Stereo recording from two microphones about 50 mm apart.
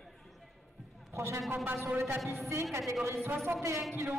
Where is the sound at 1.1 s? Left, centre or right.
Right.